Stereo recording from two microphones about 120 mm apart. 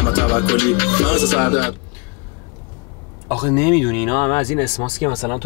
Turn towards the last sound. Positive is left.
turn(degrees=30)  # may be behind; listen again after turning